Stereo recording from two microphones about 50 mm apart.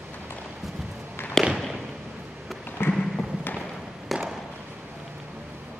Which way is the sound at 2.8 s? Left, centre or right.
Left.